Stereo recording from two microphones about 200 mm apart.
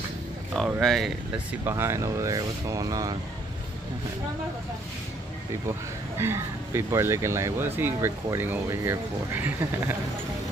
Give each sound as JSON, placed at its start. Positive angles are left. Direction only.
{"t": 0.5, "sound": "speech", "side_deg": -5}
{"t": 1.7, "sound": "speech", "side_deg": -15}
{"t": 5.7, "sound": "speech", "side_deg": -10}